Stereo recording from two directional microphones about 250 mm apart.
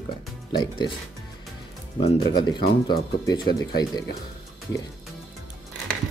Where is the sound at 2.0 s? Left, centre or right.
Centre.